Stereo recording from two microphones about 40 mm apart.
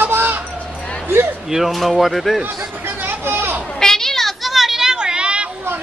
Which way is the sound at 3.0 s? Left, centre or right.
Right.